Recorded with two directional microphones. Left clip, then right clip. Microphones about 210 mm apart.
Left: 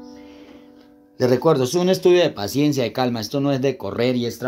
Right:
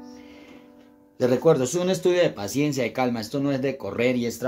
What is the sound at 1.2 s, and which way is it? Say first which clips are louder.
Speech: left 2 dB; 30° left (ahead or behind).